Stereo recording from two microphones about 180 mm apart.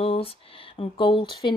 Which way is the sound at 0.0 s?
30° left (ahead or behind).